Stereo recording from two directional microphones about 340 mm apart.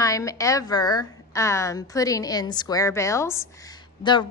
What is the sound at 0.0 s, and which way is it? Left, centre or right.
A woman's voice, centre.